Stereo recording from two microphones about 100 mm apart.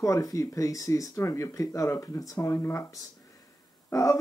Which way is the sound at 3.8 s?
30° left (ahead or behind).